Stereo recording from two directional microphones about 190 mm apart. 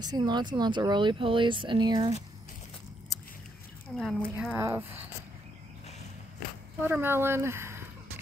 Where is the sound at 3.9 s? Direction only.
Centre (ahead or behind).